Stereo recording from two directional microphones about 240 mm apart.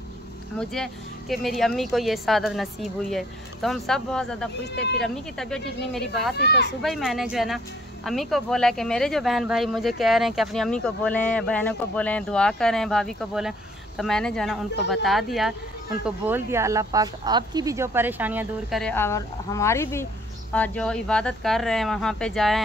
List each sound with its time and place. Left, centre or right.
1.3 s speech: centre
4.7 s speech: left
5.0 s speech: centre
6.3 s speech: left
6.8 s speech: centre